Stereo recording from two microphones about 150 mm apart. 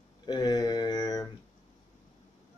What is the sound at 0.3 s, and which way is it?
Mantra, 25° left (ahead or behind).